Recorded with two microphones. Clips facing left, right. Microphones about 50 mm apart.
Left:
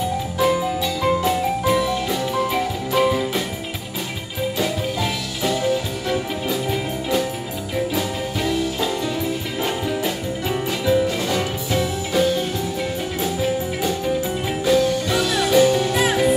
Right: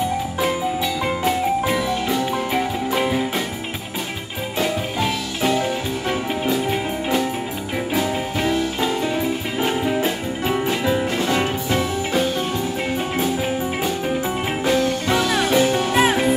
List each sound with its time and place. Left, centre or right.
1.0 s music: right
1.8 s music: centre
2.3 s music: right
4.6 s music: right
7.9 s music: right
14.6 s music: right